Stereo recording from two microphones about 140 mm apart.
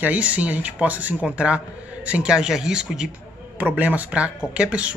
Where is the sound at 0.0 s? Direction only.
10° right (ahead or behind).